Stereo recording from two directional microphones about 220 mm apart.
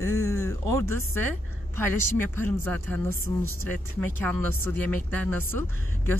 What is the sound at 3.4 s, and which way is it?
Speech, 80° right.